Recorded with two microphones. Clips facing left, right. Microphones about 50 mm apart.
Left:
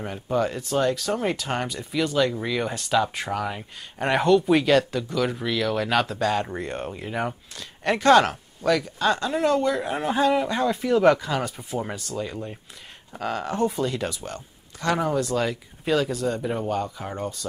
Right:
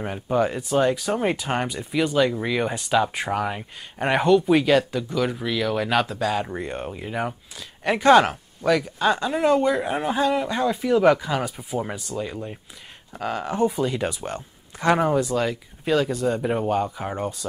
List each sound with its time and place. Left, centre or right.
0.0 s speech: centre
15.3 s speech: centre